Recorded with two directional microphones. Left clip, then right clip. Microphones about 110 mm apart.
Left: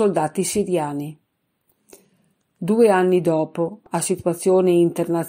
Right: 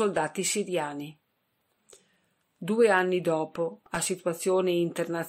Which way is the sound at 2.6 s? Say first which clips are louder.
Left 7 dB; 30° left (ahead or behind).